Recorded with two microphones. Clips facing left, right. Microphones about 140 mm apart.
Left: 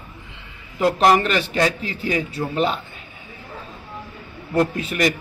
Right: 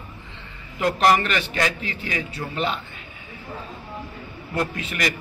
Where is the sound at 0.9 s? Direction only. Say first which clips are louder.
Left 2 dB; 35° left (ahead or behind).